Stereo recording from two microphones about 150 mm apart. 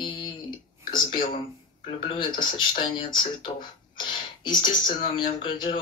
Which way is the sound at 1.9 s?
35° left (ahead or behind).